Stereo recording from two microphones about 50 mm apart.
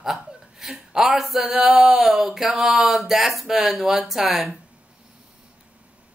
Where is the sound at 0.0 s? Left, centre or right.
Centre.